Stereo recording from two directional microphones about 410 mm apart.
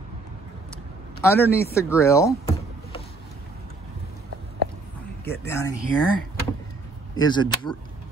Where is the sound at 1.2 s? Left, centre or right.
Centre.